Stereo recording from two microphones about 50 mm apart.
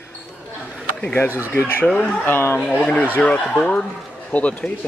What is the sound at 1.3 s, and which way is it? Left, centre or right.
Speech, right.